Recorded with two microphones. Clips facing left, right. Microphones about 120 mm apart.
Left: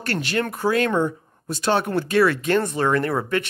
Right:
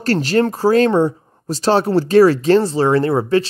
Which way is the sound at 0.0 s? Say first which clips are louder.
Right 9 dB; 40° right (ahead or behind).